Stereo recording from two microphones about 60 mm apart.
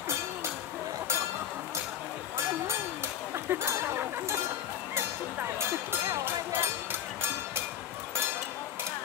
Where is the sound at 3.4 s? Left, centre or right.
Right.